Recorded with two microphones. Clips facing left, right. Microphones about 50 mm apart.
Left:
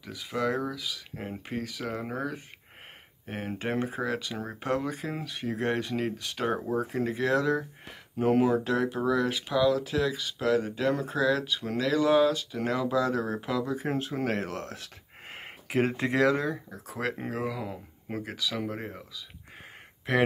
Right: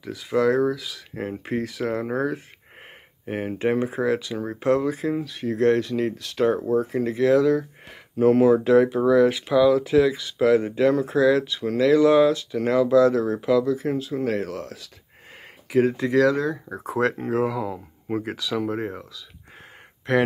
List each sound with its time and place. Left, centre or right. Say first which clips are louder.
0.0 s speech: right 9 dB; centre
5.1 s speech: right 7 dB; centre
13.9 s speech: right 5 dB; left
16.8 s speech: right 10 dB; centre
20.1 s speech: right 5 dB; centre